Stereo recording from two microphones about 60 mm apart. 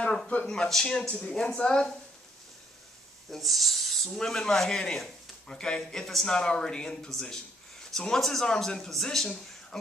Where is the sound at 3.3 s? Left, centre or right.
Centre.